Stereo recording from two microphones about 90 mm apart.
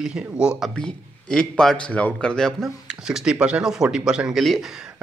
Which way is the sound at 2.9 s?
10° right (ahead or behind).